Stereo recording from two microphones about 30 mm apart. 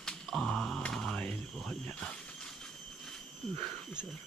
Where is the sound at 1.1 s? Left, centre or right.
Left.